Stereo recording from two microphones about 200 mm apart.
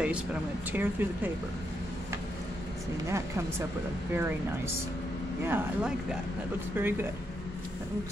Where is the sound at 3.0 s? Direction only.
15° right (ahead or behind).